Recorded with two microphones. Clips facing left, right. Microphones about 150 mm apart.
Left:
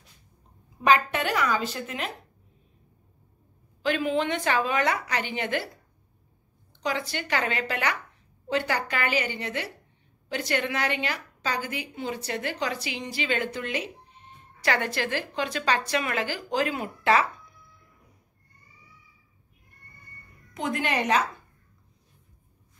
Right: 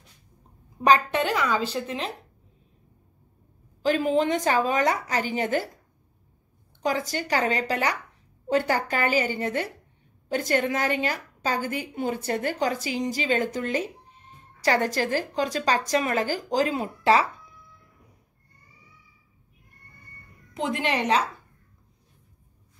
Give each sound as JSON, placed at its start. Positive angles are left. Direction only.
{"t": 0.8, "sound": "a woman's voice", "side_deg": -30}
{"t": 3.8, "sound": "a woman's voice", "side_deg": -40}
{"t": 6.8, "sound": "a woman's voice", "side_deg": -45}
{"t": 20.5, "sound": "a woman's voice", "side_deg": -30}